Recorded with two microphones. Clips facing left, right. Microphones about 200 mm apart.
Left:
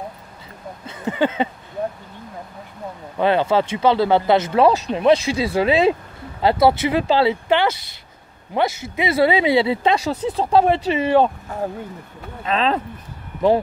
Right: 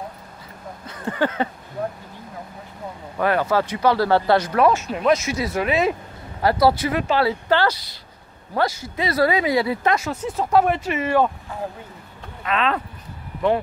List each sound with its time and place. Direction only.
1.0 s a sound: 20° left (ahead or behind)
3.2 s speech: 25° left (ahead or behind)
4.6 s speech: 30° left (ahead or behind)
12.4 s speech: 30° left (ahead or behind)